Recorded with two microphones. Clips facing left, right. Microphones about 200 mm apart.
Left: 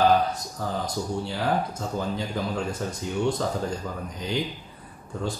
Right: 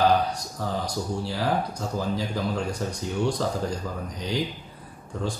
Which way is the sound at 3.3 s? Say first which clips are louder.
Even; centre (ahead or behind).